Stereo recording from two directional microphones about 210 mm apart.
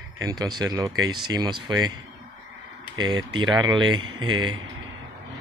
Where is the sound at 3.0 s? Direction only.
20° right (ahead or behind).